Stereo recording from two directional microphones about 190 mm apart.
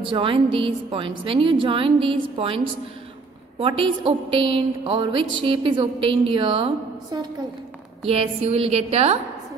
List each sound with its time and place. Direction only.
0.0 s a woman's voice: 30° right (ahead or behind)
8.0 s a woman's voice: 30° right (ahead or behind)